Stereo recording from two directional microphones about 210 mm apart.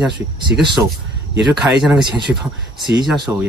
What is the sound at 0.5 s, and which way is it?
Speech, 10° right (ahead or behind).